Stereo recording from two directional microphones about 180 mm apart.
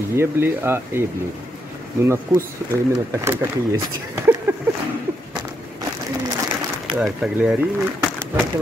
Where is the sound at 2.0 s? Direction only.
15° right (ahead or behind).